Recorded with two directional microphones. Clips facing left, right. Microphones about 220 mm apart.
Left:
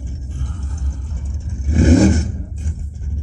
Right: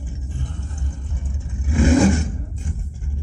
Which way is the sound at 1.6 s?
40° left (ahead or behind).